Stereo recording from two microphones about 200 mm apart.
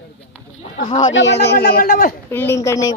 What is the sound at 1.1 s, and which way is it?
Speech, 65° left (ahead or behind).